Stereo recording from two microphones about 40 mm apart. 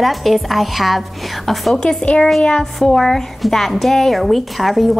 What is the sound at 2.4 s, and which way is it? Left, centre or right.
Speech, centre.